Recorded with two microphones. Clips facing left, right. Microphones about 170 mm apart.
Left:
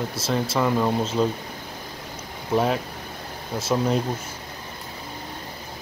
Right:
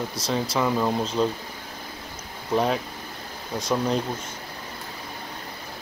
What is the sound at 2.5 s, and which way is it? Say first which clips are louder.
Speech: left 1 dB; 5° left (ahead or behind).